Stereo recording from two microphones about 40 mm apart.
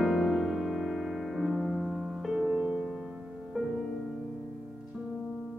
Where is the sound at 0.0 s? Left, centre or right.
Centre.